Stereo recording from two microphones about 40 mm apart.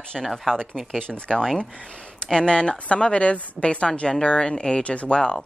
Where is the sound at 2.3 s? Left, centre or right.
Left.